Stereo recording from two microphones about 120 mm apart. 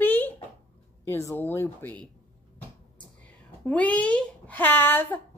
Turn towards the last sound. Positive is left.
turn(degrees=15)  # may be behind; listen again after turning